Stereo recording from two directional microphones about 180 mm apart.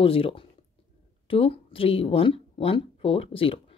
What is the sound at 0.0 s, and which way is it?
Speech, 30° left (ahead or behind).